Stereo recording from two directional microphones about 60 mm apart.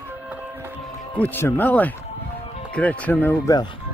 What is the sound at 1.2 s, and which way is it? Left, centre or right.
Speech, left.